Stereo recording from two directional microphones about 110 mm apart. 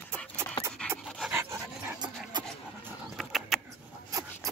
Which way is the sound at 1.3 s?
20° right (ahead or behind).